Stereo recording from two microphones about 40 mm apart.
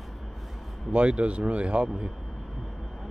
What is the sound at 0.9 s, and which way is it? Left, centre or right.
Speech, right.